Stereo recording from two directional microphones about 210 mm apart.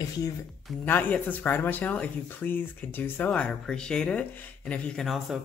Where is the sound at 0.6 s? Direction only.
10° left (ahead or behind).